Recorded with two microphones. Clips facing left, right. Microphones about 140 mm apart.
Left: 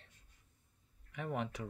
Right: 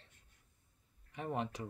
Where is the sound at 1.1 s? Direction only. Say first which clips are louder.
Right 1 dB; 30° right (ahead or behind).